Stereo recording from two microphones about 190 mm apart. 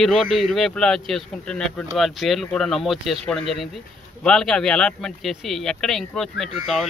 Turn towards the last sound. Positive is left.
turn(degrees=0)  # may be behind; listen again after turning